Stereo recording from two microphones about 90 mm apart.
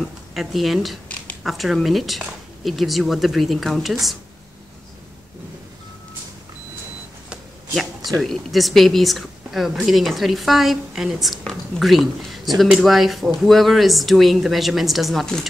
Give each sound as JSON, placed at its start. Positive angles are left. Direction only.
{"t": 0.3, "sound": "speech", "side_deg": 0}
{"t": 7.2, "sound": "cash register", "side_deg": 0}
{"t": 8.2, "sound": "speech", "side_deg": 0}